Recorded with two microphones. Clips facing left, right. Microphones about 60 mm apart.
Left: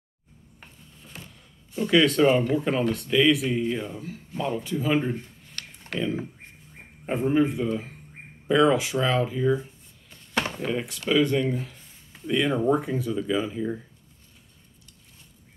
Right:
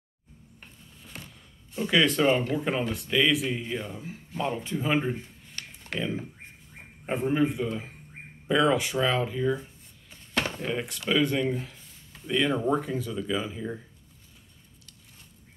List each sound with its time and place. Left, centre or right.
1.3 s a sound: centre
2.5 s speech: centre
4.6 s speech: centre
5.6 s a sound: centre
7.1 s speech: centre
10.6 s speech: centre